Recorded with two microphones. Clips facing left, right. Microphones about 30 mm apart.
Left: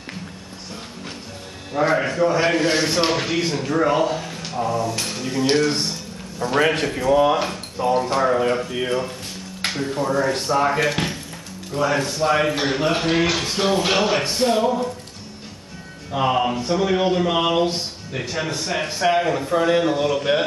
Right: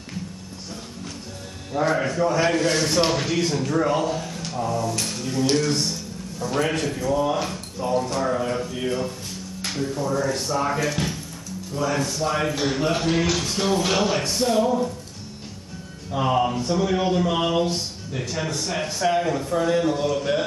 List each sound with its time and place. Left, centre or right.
1.7 s speech: centre
10.8 s speech: left
16.1 s speech: left